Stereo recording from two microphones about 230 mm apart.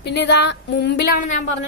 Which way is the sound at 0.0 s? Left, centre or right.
Left.